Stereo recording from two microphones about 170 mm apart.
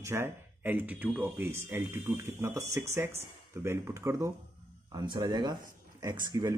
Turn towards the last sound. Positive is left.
turn(degrees=-25)  # may be behind; listen again after turning